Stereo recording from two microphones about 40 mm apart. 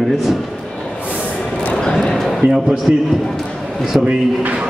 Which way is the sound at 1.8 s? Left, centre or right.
Centre.